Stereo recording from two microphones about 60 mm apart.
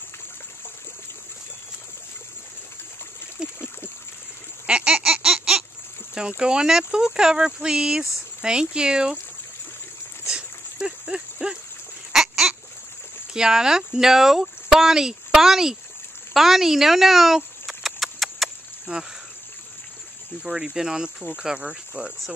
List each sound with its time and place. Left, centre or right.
3.4 s a sound: centre
4.6 s a sound: centre
6.1 s speech: centre
10.3 s dog: centre
12.1 s a sound: centre
13.3 s a woman's voice: centre
17.6 s clip-clop: centre
18.9 s speech: centre
20.4 s speech: centre